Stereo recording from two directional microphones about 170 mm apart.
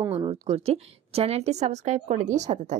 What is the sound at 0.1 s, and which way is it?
A woman's voice, 35° right (ahead or behind).